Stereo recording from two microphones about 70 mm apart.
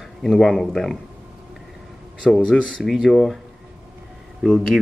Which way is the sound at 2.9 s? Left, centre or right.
Centre.